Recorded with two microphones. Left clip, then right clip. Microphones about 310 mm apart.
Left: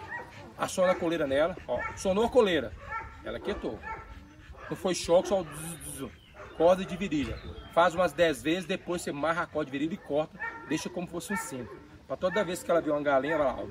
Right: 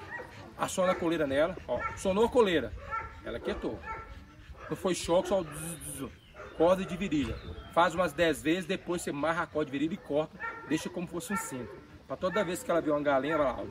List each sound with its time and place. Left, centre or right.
0.6 s a man's voice: centre
2.9 s bow-wow: left
3.3 s a man's voice: centre
4.8 s a man's voice: centre